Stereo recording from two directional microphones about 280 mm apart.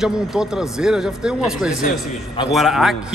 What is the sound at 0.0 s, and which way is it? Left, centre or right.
Speech, centre.